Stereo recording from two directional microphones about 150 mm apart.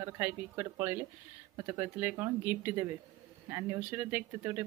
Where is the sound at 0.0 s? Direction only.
15° right (ahead or behind).